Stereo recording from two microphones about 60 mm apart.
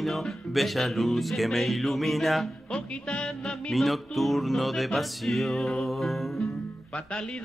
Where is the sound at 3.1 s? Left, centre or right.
Centre.